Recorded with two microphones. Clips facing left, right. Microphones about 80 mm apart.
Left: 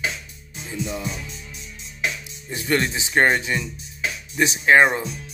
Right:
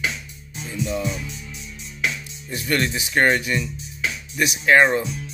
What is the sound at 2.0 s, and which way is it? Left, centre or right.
Speech, left.